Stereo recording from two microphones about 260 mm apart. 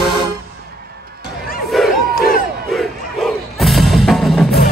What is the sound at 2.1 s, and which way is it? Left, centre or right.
Crowd, left.